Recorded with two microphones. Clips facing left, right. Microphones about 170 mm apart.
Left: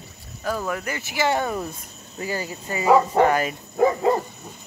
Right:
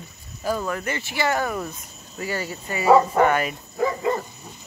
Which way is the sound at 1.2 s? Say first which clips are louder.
Left 2 dB; 25° left (ahead or behind).